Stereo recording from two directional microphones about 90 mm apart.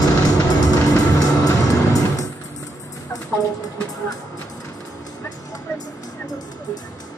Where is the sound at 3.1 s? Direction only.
40° left (ahead or behind).